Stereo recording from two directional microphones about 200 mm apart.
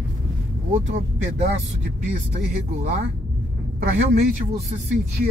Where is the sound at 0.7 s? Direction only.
45° right (ahead or behind).